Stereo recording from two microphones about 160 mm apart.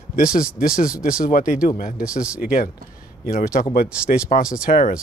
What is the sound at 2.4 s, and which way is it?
Speech, 65° left (ahead or behind).